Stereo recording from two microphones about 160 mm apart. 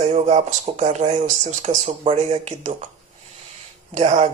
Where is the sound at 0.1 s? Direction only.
40° right (ahead or behind).